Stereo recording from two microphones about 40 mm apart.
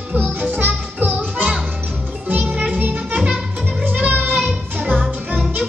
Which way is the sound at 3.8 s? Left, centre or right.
Right.